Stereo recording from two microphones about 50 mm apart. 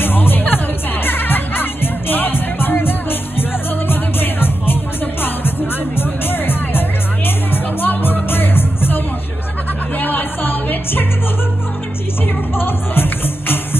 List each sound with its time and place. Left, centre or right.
0.0 s music: left
5.9 s music: left
12.5 s music: left